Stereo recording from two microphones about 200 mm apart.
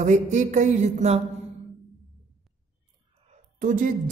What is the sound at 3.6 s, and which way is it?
Speech, 40° right (ahead or behind).